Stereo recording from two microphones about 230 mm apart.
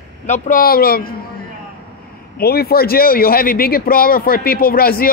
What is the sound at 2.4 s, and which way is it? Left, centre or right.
Speech, left.